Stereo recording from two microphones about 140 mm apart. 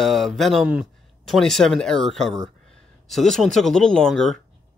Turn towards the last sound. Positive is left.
turn(degrees=5)  # may be behind; listen again after turning